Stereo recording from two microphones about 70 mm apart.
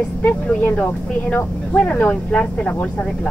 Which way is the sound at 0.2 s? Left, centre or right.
Left.